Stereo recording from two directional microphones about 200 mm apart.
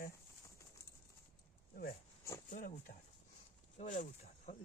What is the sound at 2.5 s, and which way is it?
Speech, 40° left (ahead or behind).